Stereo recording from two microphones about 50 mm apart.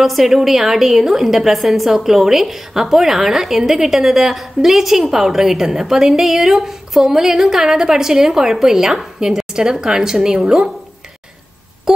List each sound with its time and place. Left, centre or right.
0.0 s a woman's voice: centre